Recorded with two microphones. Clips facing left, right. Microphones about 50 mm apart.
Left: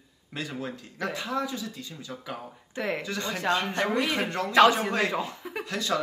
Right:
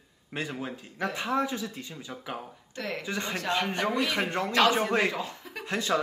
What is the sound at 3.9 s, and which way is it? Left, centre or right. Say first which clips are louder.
Speech: left 1 dB; left.